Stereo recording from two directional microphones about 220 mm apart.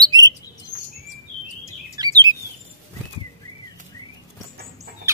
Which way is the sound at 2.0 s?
20° right (ahead or behind).